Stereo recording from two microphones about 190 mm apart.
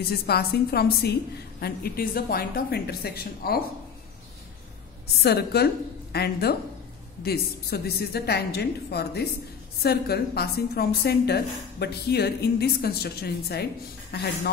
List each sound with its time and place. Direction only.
0.1 s a woman's voice: 55° left (ahead or behind)
5.0 s a woman's voice: 55° left (ahead or behind)